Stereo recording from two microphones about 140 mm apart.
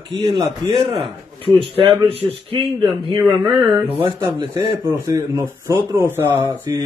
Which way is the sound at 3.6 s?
35° right (ahead or behind).